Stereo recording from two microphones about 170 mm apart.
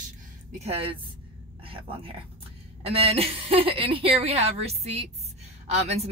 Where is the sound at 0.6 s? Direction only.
35° right (ahead or behind).